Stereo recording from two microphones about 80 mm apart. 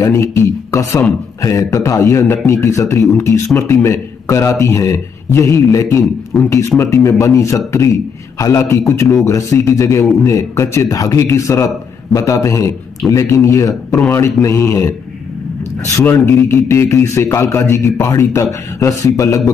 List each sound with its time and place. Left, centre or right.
0.0 s speech: left
6.3 s speech: centre
6.8 s a man's voice: left
16.3 s speech: left